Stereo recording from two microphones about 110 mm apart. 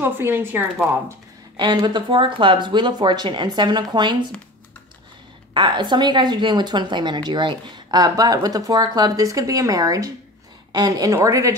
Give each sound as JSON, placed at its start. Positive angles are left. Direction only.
{"t": 0.0, "sound": "a woman's voice", "side_deg": -20}
{"t": 1.6, "sound": "speech", "side_deg": -45}
{"t": 5.5, "sound": "a woman's voice", "side_deg": -45}